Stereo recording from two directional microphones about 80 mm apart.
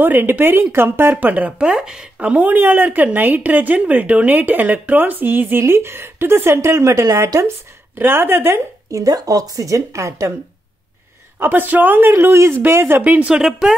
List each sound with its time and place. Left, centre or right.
0.0 s speech: right
8.9 s a woman's voice: right
11.3 s speech: right
13.0 s speech: centre
13.4 s speech: centre